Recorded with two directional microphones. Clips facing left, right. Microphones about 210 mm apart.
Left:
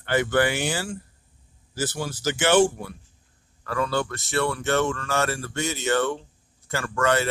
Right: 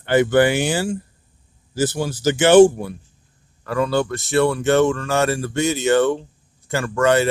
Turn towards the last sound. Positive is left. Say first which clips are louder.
# right 6 dB
turn(degrees=-20)  # may be behind; listen again after turning